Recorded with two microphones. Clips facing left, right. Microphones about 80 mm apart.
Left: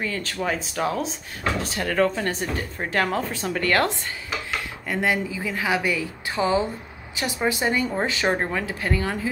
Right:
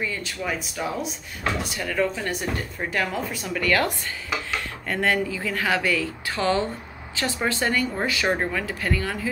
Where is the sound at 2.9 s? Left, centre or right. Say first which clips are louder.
Left 3 dB; left.